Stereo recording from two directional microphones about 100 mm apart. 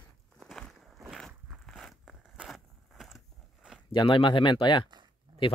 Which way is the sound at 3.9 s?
60° left (ahead or behind).